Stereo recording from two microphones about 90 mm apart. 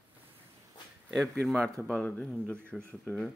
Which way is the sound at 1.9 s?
15° left (ahead or behind).